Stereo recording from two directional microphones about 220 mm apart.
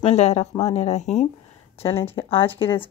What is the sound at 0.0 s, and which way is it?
A woman's voice, 30° left (ahead or behind).